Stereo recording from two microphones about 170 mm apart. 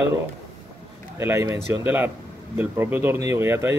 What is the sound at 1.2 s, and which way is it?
Speech, 15° right (ahead or behind).